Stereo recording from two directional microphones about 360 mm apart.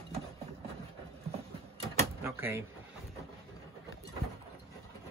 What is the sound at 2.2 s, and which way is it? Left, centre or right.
Speech, centre.